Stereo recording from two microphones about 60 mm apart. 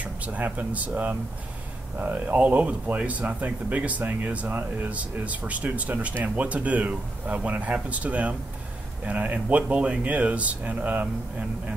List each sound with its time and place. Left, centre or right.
0.0 s speech: right